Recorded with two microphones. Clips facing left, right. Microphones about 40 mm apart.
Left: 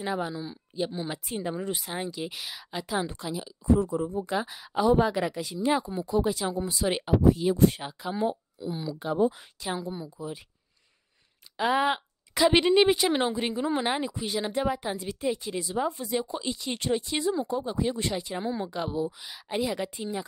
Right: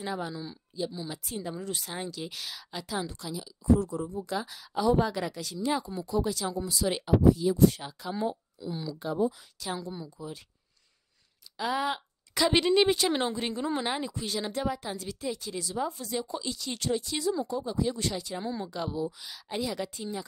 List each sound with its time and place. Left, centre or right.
0.0 s speech: centre
0.7 s speech: left; by 9.1 s centre
9.2 s speech: left
9.6 s speech: left
11.5 s speech: left
12.4 s speech: centre